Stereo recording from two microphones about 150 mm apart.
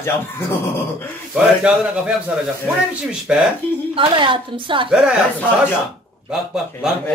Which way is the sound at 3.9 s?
35° right (ahead or behind).